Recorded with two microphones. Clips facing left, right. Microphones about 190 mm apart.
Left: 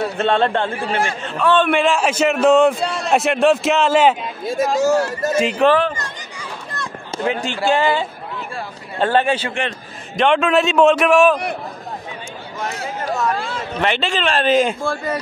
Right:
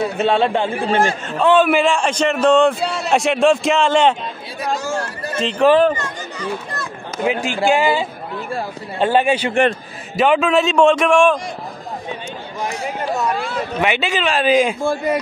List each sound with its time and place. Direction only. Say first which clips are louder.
0.2 s speech: right 1 dB; 5° right (ahead or behind)
0.8 s a man's voice: right 4 dB; 30° right (ahead or behind)
1.5 s a man's voice: right 2 dB; 5° right (ahead or behind)
4.7 s speech: left 7 dB; 45° left (ahead or behind)
5.3 s speech: left 3 dB; 10° left (ahead or behind)
6.4 s a sound: right 5 dB; centre (ahead or behind)
7.2 s speech: right 2 dB; 10° right (ahead or behind)
9.5 s a man's voice: right 8 dB; 50° right (ahead or behind)
10.1 s a man's voice: right 1 dB; 5° right (ahead or behind)
13.4 s a man's voice: right 2 dB; 5° right (ahead or behind)
14.8 s speech: right 4 dB; 15° right (ahead or behind)